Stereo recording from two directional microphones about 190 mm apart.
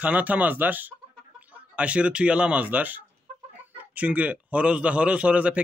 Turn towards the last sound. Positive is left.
turn(degrees=-5)  # may be behind; listen again after turning